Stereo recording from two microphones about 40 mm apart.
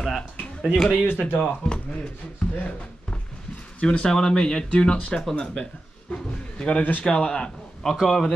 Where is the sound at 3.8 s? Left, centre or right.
Left.